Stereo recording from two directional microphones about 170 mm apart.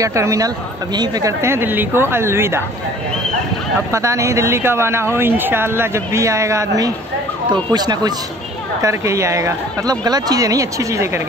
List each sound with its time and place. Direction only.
0.0 s speech: 20° right (ahead or behind)
3.9 s speech: 15° right (ahead or behind)